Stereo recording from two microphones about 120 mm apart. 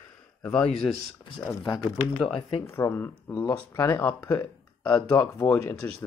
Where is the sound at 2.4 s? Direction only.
50° left (ahead or behind).